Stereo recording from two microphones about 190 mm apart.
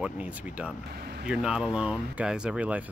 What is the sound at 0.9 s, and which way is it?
Speech, 55° right (ahead or behind).